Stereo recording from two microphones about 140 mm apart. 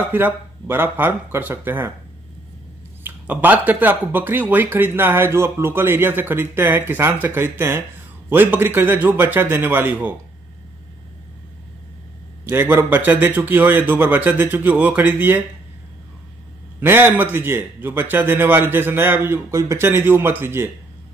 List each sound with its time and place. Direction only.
0.0 s speech: 15° right (ahead or behind)
3.0 s speech: 15° right (ahead or behind)
12.4 s speech: 15° right (ahead or behind)
16.8 s speech: 15° right (ahead or behind)